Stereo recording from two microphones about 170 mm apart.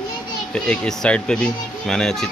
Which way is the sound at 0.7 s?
5° left (ahead or behind).